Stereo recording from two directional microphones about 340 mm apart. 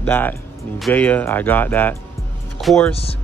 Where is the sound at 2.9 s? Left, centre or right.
Centre.